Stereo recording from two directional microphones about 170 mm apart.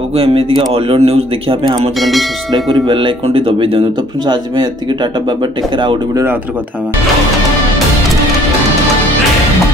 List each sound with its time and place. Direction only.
0.1 s a man's voice: 35° right (ahead or behind)
2.0 s speech: centre (ahead or behind)
2.5 s speech: 25° right (ahead or behind)
5.4 s speech: 25° right (ahead or behind)